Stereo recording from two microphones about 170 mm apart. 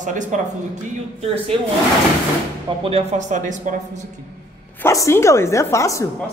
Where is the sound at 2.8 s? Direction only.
35° right (ahead or behind).